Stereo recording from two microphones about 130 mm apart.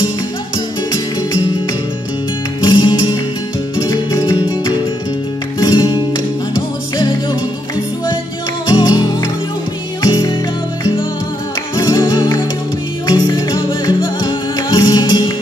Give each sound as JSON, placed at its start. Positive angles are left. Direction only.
{"t": 2.6, "sound": "music", "side_deg": 35}
{"t": 5.6, "sound": "music", "side_deg": 35}
{"t": 8.6, "sound": "music", "side_deg": 35}
{"t": 11.7, "sound": "music", "side_deg": 35}